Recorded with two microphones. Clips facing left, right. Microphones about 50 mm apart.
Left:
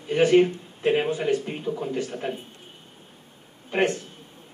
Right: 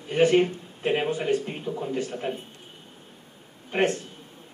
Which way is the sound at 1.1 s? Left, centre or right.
Right.